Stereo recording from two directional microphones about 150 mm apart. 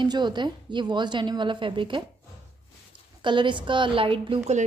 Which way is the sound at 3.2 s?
30° right (ahead or behind).